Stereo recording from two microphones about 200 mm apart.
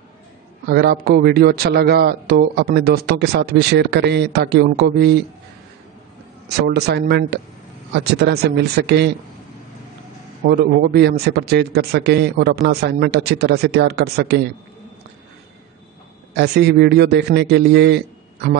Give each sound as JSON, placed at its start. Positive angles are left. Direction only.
{"t": 0.7, "sound": "speech", "side_deg": -50}
{"t": 6.7, "sound": "a man's voice", "side_deg": -55}
{"t": 10.4, "sound": "a man's voice", "side_deg": -50}
{"t": 16.3, "sound": "a man's voice", "side_deg": -55}